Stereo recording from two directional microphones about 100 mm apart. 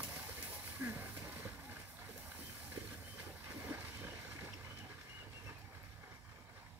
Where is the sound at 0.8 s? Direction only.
15° right (ahead or behind).